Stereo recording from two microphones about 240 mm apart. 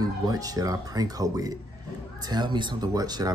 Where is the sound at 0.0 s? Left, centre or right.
Centre.